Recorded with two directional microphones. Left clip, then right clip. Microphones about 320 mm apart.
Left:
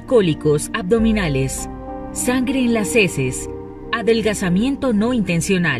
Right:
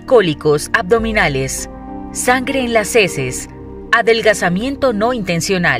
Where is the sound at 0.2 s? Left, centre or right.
Centre.